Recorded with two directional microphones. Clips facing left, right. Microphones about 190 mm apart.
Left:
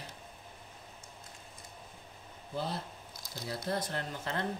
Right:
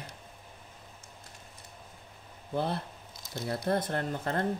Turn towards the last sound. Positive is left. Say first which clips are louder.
# right 5 dB
turn(degrees=-50)  # may be behind; listen again after turning